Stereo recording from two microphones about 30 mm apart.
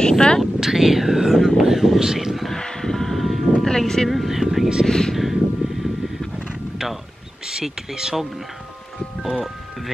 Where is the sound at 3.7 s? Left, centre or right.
Centre.